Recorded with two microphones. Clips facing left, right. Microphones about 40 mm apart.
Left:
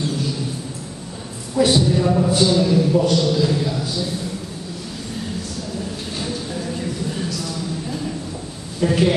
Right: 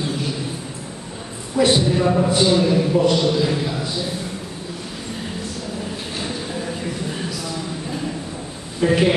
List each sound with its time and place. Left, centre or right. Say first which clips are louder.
1.6 s a man's voice: even; centre
6.1 s a sound: left 1 dB; centre
8.8 s a man's voice: right 1 dB; right